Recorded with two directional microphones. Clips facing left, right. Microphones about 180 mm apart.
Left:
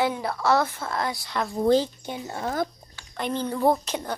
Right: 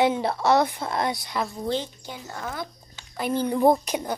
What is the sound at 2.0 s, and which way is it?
Speech, 20° left (ahead or behind).